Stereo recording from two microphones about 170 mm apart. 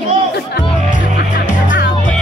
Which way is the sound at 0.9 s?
50° left (ahead or behind).